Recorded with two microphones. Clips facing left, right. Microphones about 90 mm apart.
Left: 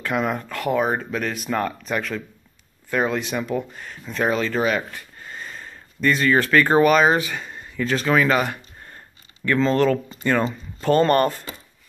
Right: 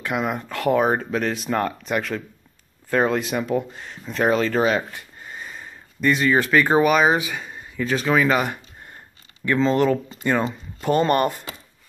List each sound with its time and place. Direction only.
0.0 s speech: 15° right (ahead or behind)
0.5 s speech: 35° right (ahead or behind)
5.2 s speech: 15° right (ahead or behind)